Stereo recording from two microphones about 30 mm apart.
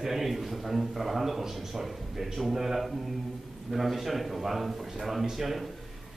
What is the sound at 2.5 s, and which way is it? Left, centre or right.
A man's voice, centre.